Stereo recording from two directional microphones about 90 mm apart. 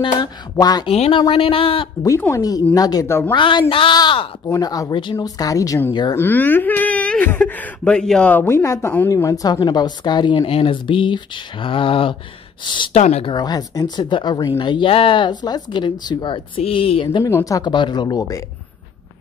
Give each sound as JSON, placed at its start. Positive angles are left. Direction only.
{"t": 0.0, "sound": "speech", "side_deg": 50}
{"t": 1.3, "sound": "speech", "side_deg": 90}
{"t": 2.3, "sound": "speech", "side_deg": 45}
{"t": 3.1, "sound": "speech", "side_deg": 30}
{"t": 3.3, "sound": "speech", "side_deg": 70}
{"t": 3.9, "sound": "a sound", "side_deg": 55}
{"t": 4.5, "sound": "speech", "side_deg": 45}
{"t": 6.1, "sound": "speech", "side_deg": 20}
{"t": 8.3, "sound": "speech", "side_deg": 25}
{"t": 9.1, "sound": "speech", "side_deg": 40}
{"t": 12.6, "sound": "speech", "side_deg": 60}
{"t": 14.6, "sound": "speech", "side_deg": 65}
{"t": 17.2, "sound": "speech", "side_deg": 30}
{"t": 17.6, "sound": "speech", "side_deg": 55}